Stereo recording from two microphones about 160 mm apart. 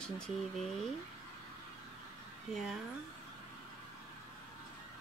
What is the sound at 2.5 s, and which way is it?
Speech, centre (ahead or behind).